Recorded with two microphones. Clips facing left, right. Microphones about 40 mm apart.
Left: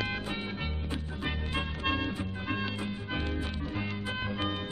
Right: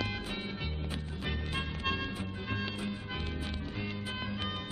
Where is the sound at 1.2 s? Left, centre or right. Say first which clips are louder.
Left 2 dB; centre.